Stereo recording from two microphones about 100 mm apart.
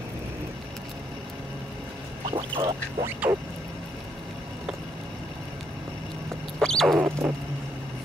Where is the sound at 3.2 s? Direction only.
15° right (ahead or behind).